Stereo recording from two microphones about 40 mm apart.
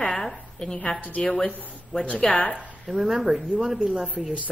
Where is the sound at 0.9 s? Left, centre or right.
Left.